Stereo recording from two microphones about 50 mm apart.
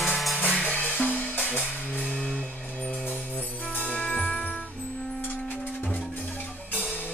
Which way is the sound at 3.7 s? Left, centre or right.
Left.